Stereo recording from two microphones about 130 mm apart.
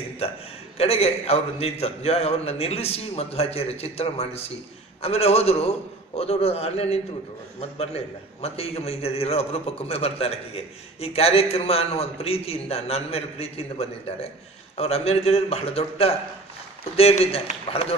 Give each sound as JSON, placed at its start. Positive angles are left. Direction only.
{"t": 0.7, "sound": "a man's voice", "side_deg": 50}